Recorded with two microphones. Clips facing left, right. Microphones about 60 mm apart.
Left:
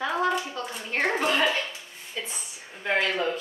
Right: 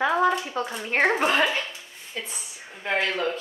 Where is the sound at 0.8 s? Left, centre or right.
Right.